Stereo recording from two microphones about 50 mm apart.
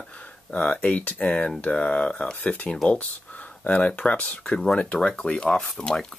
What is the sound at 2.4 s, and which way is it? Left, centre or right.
Speech, left.